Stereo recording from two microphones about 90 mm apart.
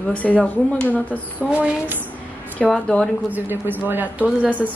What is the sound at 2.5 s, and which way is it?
Speech, 10° left (ahead or behind).